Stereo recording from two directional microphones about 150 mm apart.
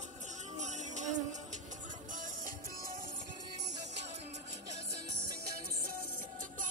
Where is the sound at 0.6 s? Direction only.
50° right (ahead or behind).